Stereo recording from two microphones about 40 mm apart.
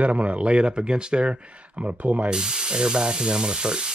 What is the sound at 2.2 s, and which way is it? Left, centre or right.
Frying, centre.